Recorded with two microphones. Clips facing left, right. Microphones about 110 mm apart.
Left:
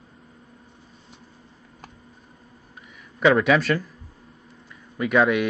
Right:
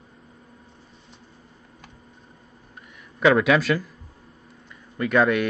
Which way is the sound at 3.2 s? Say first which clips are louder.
Even; centre (ahead or behind).